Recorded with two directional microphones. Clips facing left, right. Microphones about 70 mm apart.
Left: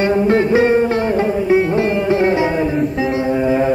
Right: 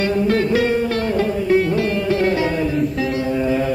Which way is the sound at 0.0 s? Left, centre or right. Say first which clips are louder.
Left 4 dB; left.